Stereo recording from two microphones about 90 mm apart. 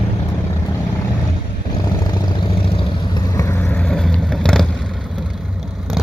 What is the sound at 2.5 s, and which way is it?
Vehicle, 85° left.